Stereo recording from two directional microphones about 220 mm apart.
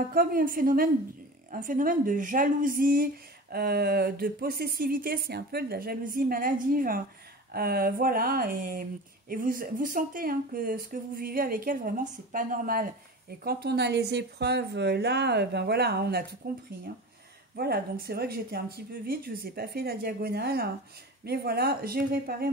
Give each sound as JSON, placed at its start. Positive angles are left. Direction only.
{"t": 0.1, "sound": "a woman's voice", "side_deg": -40}
{"t": 17.6, "sound": "a woman's voice", "side_deg": -45}